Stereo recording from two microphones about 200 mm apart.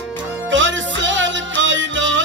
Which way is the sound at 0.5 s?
65° right (ahead or behind).